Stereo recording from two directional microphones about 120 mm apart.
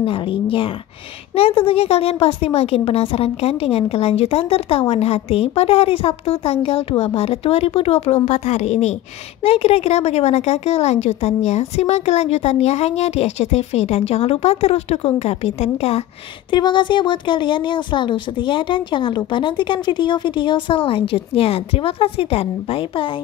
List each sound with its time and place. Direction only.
0.0 s a woman's voice: 50° left (ahead or behind); by 8.9 s 65° left (ahead or behind)
9.4 s a woman's voice: 55° left (ahead or behind)
16.4 s speech: 40° left (ahead or behind)